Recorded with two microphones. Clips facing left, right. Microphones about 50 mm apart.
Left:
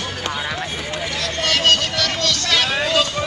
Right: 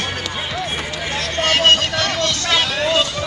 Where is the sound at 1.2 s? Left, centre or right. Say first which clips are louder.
Right 3 dB; right.